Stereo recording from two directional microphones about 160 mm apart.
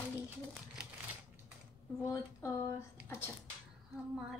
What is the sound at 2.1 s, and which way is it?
Speech, 20° left (ahead or behind).